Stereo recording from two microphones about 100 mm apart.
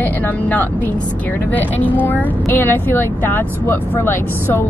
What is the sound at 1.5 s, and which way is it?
Speech, 15° left (ahead or behind).